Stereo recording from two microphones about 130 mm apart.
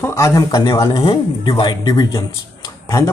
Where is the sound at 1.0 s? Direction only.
45° left (ahead or behind).